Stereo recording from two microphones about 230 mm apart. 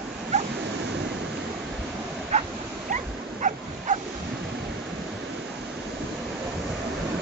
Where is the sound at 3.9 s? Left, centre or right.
Right.